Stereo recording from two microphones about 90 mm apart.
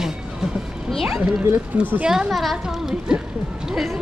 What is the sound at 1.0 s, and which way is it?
A woman's voice, 5° right (ahead or behind).